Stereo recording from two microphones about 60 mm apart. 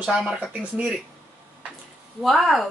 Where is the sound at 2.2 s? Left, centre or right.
Centre.